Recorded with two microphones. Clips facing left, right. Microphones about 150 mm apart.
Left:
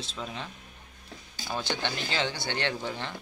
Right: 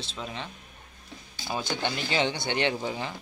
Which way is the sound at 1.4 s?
10° right (ahead or behind).